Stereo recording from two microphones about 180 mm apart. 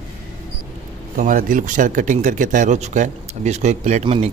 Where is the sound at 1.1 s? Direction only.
50° right (ahead or behind).